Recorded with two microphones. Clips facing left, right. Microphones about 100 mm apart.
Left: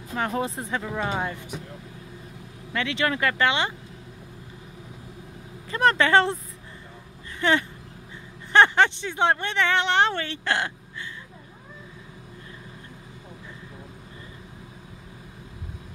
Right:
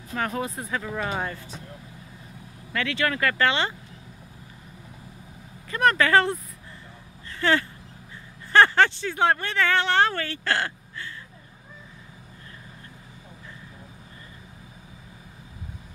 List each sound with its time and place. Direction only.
0.1 s speech: 25° left (ahead or behind)
2.7 s speech: 20° left (ahead or behind)
5.7 s speech: 30° left (ahead or behind)